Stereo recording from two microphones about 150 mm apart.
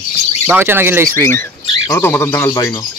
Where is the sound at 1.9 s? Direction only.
15° left (ahead or behind).